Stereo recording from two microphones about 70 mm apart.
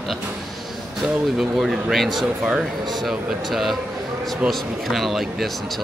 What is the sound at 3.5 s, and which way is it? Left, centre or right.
Speech, centre.